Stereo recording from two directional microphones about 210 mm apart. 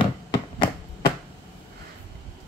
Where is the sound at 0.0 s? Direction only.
25° left (ahead or behind).